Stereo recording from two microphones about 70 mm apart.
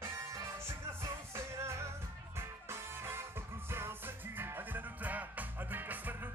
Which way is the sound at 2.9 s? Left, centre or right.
Right.